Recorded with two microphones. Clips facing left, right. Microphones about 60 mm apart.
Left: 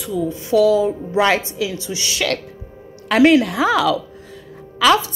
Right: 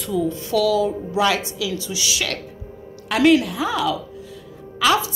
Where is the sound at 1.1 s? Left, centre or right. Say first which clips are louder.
Left 4 dB; left.